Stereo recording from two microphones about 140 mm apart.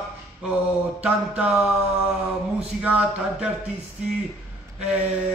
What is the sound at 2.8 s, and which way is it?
Speech, 10° right (ahead or behind).